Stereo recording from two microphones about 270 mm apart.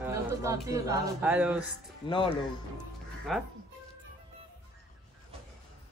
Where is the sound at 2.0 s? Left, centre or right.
Centre.